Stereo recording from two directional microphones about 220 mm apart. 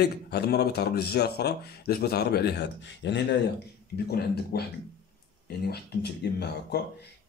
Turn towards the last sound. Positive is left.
turn(degrees=45)  # may be behind; listen again after turning